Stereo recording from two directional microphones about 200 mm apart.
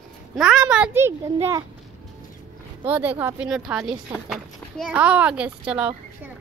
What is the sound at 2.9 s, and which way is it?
Speech, 10° right (ahead or behind).